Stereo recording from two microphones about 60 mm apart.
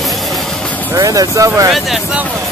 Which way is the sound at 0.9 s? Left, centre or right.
Right.